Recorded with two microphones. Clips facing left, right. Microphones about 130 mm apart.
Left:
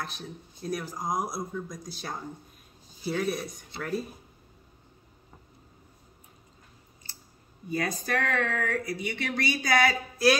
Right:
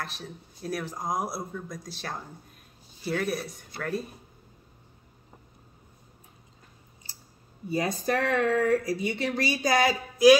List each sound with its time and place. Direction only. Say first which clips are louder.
0.0 s speech: even; centre (ahead or behind)
7.7 s speech: right 3 dB; 30° right (ahead or behind)